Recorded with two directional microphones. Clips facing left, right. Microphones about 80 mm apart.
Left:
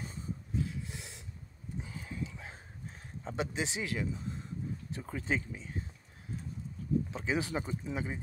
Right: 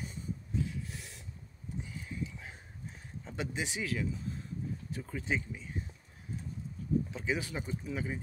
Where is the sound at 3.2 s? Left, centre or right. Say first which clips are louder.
Left 2 dB; left.